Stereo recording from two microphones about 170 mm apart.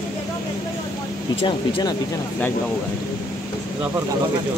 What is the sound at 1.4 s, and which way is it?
Speech, 30° left (ahead or behind).